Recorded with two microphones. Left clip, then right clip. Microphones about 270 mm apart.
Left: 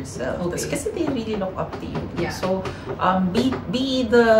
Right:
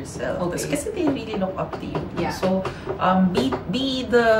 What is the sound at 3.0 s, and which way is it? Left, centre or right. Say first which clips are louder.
A woman's voice: even; centre.